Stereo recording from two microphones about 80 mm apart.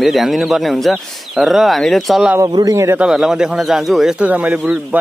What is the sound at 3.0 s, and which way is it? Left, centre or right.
A man's voice, centre.